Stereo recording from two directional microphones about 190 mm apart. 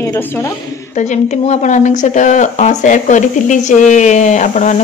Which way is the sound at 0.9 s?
40° left (ahead or behind).